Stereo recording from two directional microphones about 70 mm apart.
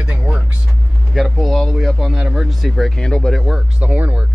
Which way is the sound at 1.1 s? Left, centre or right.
Centre.